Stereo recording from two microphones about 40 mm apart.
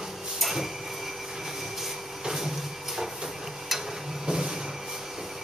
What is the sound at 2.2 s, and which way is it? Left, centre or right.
Vehicle, centre.